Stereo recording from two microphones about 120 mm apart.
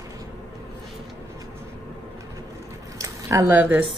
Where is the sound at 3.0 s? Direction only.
25° right (ahead or behind).